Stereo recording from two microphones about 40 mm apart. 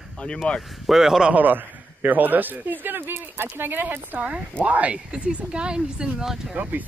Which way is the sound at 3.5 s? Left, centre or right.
Right.